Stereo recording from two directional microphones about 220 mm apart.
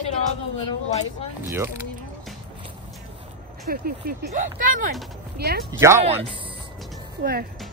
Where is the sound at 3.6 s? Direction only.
40° right (ahead or behind).